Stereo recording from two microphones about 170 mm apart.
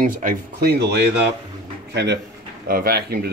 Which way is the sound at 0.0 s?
50° right (ahead or behind).